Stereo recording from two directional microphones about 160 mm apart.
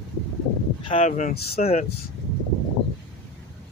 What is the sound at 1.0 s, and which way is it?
Speech, 50° left (ahead or behind).